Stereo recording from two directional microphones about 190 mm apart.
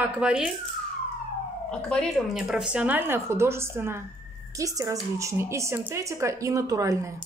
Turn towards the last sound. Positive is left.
turn(degrees=-15)  # may be behind; listen again after turning